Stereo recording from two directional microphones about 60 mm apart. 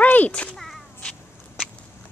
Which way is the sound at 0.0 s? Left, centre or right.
Left.